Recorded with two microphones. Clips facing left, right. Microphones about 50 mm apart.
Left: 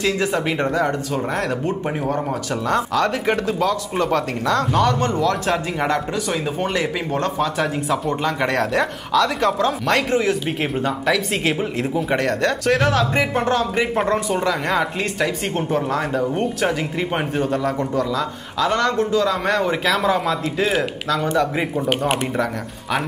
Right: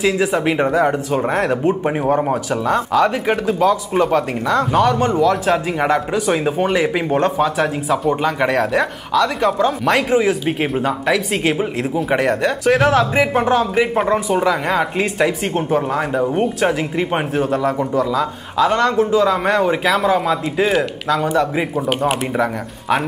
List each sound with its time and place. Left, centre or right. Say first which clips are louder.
0.0 s speech: right 4 dB; centre
2.6 s speech: right 3 dB; centre
6.1 s speech: right 6 dB; centre